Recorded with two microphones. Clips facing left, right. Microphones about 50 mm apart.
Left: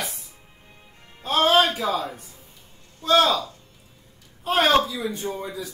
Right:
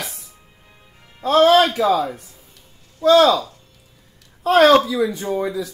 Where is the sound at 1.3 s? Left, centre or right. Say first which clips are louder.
Right 6 dB; right.